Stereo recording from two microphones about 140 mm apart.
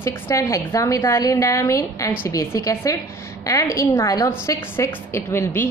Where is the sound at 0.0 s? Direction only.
20° left (ahead or behind).